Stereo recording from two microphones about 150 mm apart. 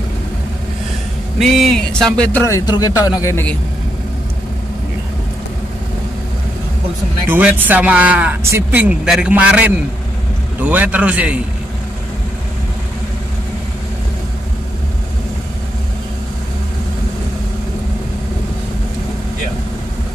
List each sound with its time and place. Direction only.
1.4 s speech: centre (ahead or behind)
2.4 s speech: 25° left (ahead or behind)
7.2 s a man's voice: 10° right (ahead or behind)